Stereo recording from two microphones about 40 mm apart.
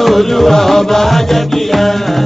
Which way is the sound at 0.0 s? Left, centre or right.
Centre.